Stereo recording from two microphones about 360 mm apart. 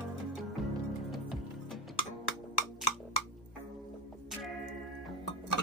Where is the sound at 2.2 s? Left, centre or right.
Left.